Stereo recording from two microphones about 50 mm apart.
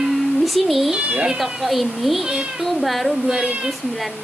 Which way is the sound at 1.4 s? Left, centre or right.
Centre.